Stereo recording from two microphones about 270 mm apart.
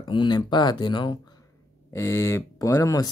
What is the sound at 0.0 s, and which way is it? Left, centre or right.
Speech, centre.